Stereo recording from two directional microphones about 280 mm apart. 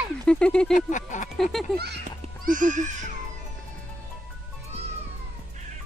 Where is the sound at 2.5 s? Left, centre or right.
Right.